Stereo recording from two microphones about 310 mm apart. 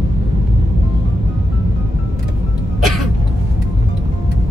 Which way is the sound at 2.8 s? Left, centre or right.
Centre.